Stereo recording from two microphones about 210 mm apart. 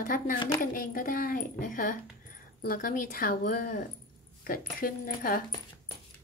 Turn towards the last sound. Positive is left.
turn(degrees=40)  # may be behind; listen again after turning